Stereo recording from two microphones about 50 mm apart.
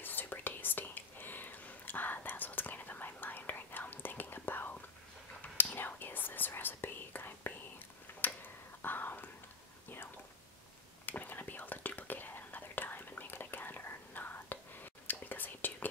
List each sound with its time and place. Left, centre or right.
0.0 s whispering: left
8.1 s tick-tock: left
8.8 s whispering: left
11.1 s whispering: left